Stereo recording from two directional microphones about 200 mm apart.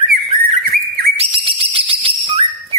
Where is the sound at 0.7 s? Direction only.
50° right (ahead or behind).